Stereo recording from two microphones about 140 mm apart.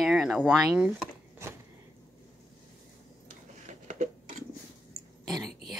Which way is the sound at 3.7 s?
60° right (ahead or behind).